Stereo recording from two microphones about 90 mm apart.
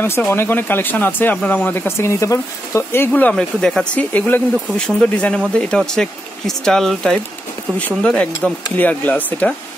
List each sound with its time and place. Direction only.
0.3 s speech: 25° left (ahead or behind)
3.1 s speech: 15° left (ahead or behind)